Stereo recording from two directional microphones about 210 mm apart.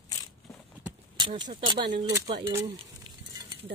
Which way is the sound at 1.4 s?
25° right (ahead or behind).